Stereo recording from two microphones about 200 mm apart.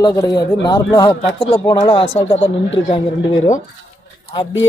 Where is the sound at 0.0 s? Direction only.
15° left (ahead or behind).